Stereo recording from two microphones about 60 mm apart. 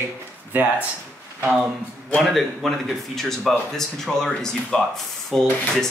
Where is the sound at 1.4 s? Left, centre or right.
Right.